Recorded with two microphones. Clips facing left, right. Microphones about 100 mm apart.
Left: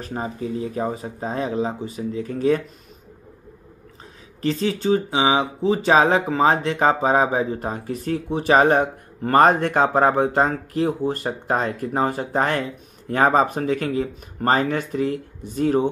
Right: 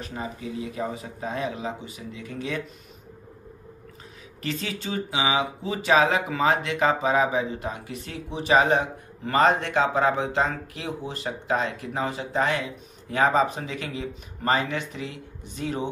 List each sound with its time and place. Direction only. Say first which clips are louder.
0.0 s speech: left 6 dB; 40° left (ahead or behind)
4.4 s speech: left 9 dB; 35° left (ahead or behind)